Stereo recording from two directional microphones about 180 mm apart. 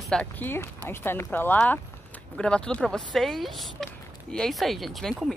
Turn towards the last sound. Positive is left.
turn(degrees=0)  # may be behind; listen again after turning